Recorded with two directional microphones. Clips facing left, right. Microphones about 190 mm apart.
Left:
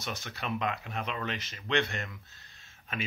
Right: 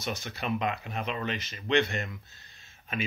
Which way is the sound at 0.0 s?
10° right (ahead or behind).